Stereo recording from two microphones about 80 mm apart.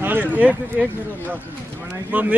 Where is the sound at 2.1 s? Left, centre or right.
Right.